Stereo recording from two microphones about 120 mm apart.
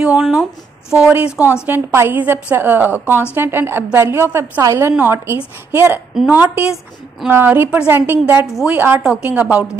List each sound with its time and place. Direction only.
0.0 s a woman's voice: 5° right (ahead or behind)